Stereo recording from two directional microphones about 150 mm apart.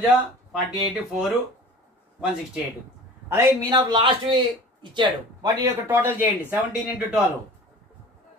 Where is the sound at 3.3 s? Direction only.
25° right (ahead or behind).